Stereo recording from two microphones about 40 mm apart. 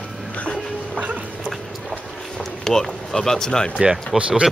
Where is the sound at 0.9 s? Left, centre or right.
Right.